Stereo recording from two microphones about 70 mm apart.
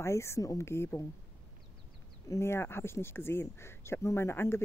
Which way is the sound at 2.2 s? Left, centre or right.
Left.